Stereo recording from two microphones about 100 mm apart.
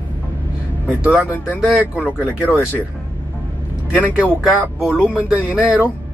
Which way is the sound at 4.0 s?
15° right (ahead or behind).